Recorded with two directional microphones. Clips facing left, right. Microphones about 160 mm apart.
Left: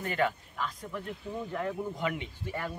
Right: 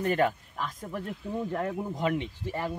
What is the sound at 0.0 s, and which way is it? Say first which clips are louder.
Speech: right 4 dB; 40° right (ahead or behind).